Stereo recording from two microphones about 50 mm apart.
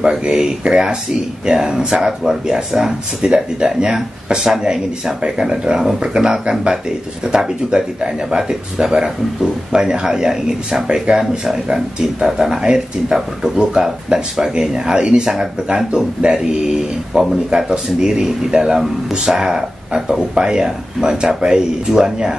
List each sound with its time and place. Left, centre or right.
0.0 s speech: centre